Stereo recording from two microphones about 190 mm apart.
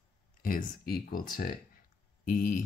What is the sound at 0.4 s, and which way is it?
Speech, 50° left (ahead or behind).